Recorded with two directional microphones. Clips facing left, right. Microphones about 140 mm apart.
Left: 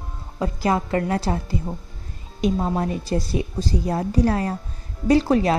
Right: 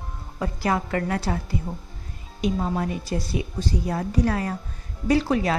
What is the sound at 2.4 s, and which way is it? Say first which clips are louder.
A woman's voice: left 3 dB; 35° left (ahead or behind).